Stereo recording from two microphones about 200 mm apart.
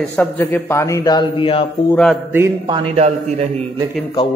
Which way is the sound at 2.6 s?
25° right (ahead or behind).